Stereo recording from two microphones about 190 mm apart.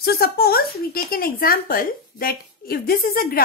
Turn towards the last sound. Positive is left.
turn(degrees=50)  # may be behind; listen again after turning